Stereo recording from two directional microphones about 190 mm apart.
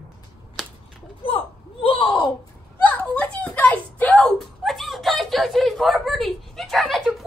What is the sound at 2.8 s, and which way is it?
Speech, 10° left (ahead or behind).